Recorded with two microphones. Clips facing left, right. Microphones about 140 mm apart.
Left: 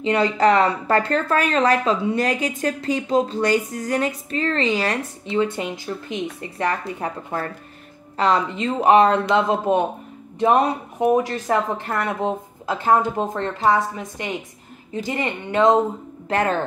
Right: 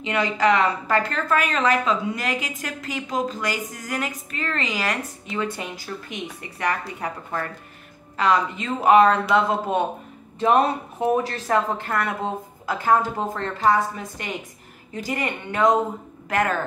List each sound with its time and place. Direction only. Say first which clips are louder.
0.0 s speech: left 4 dB; 30° left (ahead or behind)